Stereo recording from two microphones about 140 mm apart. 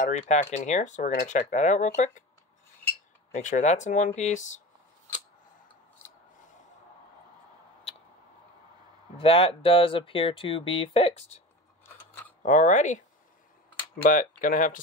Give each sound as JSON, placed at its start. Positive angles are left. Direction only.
{"t": 0.0, "sound": "speech", "side_deg": 60}
{"t": 3.3, "sound": "speech", "side_deg": 60}
{"t": 9.1, "sound": "speech", "side_deg": 40}
{"t": 12.4, "sound": "speech", "side_deg": 65}
{"t": 14.0, "sound": "speech", "side_deg": 75}